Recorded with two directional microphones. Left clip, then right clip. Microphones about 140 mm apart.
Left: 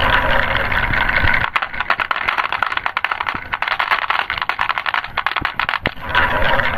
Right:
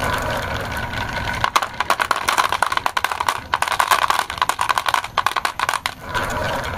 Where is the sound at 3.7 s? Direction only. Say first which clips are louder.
Even; 35° right (ahead or behind).